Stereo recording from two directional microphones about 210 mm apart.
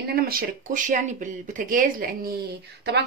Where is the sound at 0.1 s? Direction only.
45° right (ahead or behind).